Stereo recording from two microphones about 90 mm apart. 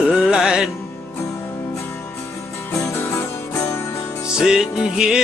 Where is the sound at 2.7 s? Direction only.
30° left (ahead or behind).